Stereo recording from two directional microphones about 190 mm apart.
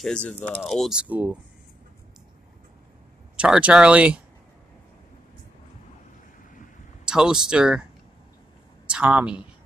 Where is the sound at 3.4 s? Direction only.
5° right (ahead or behind).